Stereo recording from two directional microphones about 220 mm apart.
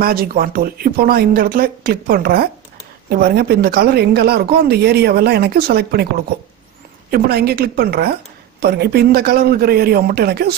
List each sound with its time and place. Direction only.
0.0 s speech: 45° right (ahead or behind)
7.1 s speech: 45° right (ahead or behind)